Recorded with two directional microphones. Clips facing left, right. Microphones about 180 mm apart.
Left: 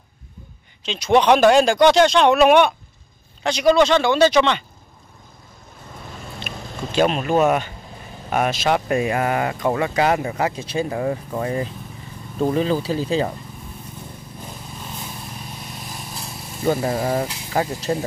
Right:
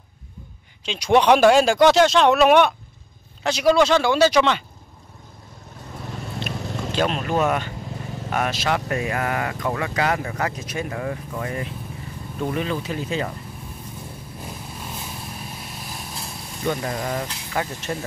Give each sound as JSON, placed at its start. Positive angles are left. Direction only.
{"t": 0.8, "sound": "speech", "side_deg": -10}
{"t": 7.0, "sound": "speech", "side_deg": 15}
{"t": 15.6, "sound": "vehicle", "side_deg": 0}
{"t": 16.6, "sound": "speech", "side_deg": 30}